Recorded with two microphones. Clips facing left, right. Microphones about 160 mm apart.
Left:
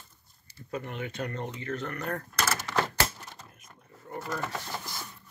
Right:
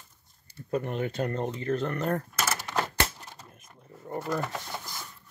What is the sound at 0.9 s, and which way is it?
Speech, 40° right (ahead or behind).